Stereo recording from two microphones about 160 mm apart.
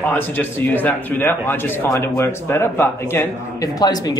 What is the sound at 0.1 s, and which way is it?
Speech, 10° left (ahead or behind).